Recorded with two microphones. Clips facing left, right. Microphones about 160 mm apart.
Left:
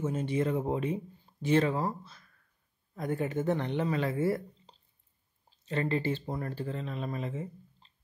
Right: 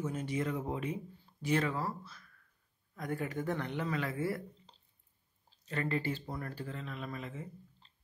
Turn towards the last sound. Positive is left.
turn(degrees=25)  # may be behind; listen again after turning